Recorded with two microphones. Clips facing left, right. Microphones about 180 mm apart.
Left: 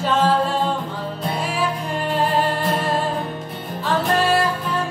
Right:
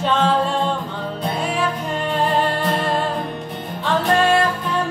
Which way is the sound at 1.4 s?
5° left (ahead or behind).